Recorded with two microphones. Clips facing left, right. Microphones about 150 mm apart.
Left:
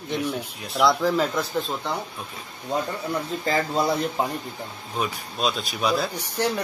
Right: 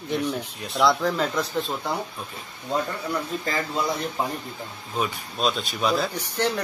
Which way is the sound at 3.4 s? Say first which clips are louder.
Left 7 dB; 30° left (ahead or behind).